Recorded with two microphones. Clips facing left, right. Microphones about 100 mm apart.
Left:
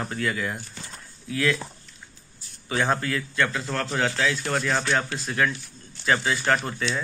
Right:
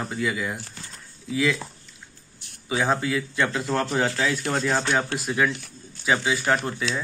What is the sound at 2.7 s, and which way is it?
Speech, 10° right (ahead or behind).